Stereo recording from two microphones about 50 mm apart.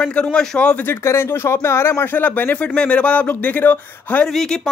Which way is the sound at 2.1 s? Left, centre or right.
Left.